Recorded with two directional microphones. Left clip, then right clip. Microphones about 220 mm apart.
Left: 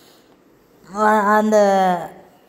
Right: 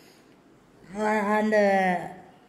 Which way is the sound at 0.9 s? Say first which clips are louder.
Left 10 dB; 60° left (ahead or behind).